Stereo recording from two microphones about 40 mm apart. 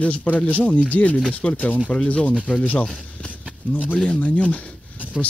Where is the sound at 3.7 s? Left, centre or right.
Left.